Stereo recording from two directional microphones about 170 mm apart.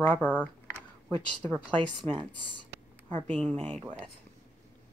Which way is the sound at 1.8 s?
30° right (ahead or behind).